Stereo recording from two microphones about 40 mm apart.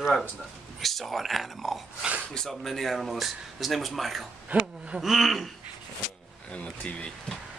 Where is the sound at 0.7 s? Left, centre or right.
Centre.